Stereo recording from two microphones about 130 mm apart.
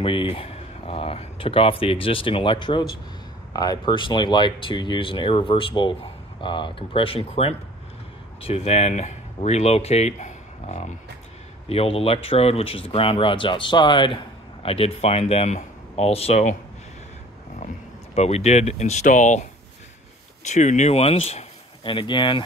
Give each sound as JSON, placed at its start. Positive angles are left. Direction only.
{"t": 0.0, "sound": "speech", "side_deg": 40}
{"t": 11.7, "sound": "speech", "side_deg": 50}
{"t": 18.1, "sound": "speech", "side_deg": 55}
{"t": 20.4, "sound": "speech", "side_deg": 65}